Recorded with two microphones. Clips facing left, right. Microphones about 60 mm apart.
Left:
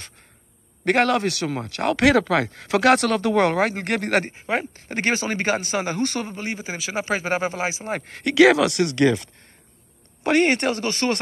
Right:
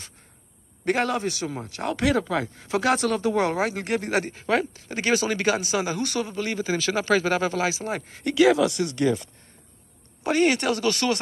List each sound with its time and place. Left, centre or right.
0.8 s speech: left
4.3 s speech: left
4.7 s speech: left
6.4 s speech: left
7.9 s speech: left
10.4 s speech: left